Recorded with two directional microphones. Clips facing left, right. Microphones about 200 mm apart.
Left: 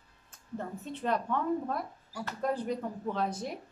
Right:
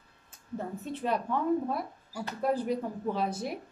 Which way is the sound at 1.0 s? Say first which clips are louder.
Right 1 dB; 10° right (ahead or behind).